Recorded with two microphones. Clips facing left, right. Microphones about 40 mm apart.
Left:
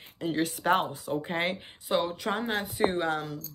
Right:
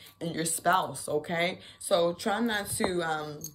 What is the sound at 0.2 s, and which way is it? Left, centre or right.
Speech, left.